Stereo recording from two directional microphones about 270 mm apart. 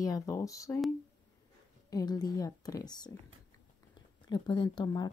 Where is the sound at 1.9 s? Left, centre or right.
Centre.